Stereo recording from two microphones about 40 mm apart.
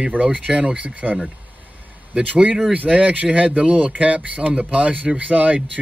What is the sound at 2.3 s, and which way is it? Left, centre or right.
Speech, right.